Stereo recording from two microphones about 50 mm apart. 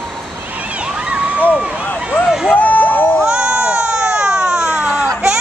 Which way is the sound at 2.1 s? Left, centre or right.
Centre.